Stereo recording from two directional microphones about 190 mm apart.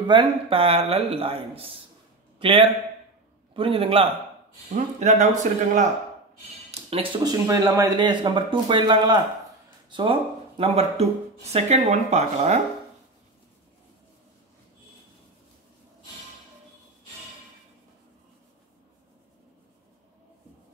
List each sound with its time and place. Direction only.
0.0 s a man's voice: 25° right (ahead or behind)
4.7 s speech: 40° right (ahead or behind)
6.7 s speech: 30° right (ahead or behind)
7.4 s speech: 15° right (ahead or behind); by 12.5 s 35° right (ahead or behind)